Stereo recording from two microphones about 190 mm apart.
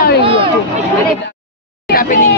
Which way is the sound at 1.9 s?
50° left (ahead or behind).